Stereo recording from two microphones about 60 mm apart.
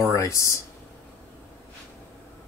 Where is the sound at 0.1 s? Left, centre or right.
Left.